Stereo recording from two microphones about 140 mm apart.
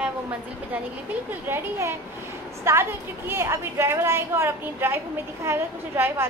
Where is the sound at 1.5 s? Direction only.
20° right (ahead or behind).